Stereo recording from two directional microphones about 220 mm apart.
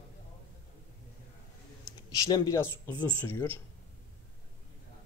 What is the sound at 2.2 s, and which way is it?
Speech, 15° left (ahead or behind).